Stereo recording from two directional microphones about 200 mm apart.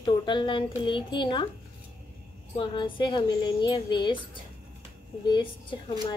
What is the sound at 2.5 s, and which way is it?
A woman's voice, 25° left (ahead or behind).